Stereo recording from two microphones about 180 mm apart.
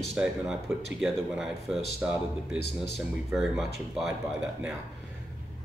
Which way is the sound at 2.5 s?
65° left (ahead or behind).